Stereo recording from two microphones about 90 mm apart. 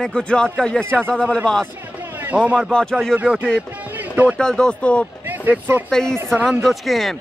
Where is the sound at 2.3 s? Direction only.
10° right (ahead or behind).